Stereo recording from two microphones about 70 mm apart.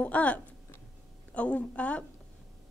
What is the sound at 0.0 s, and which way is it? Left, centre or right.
A woman's voice, left.